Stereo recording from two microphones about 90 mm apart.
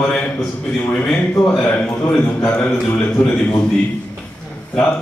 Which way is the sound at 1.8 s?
20° left (ahead or behind).